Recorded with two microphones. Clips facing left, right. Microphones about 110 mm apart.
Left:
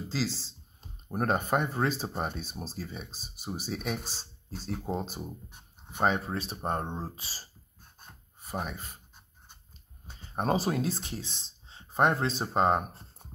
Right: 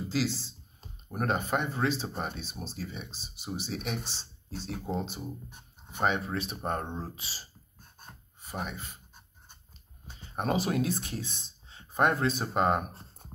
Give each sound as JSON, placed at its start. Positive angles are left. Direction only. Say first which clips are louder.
{"t": 0.1, "sound": "speech", "louder": "right 2 dB", "side_deg": 30}
{"t": 10.3, "sound": "speech", "louder": "left 1 dB", "side_deg": 35}